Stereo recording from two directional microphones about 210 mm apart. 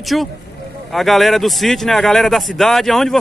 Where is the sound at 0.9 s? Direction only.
Centre (ahead or behind).